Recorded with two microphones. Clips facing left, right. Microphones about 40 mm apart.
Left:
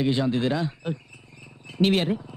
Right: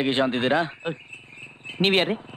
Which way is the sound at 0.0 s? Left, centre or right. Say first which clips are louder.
Right 1 dB; right.